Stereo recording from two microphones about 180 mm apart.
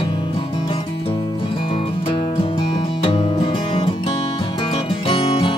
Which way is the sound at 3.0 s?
30° left (ahead or behind).